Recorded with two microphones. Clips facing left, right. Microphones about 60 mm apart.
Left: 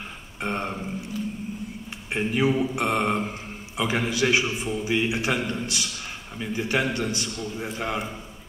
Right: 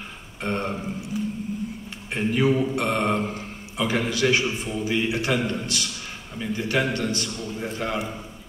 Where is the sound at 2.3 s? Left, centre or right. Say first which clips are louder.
Right 2 dB; centre.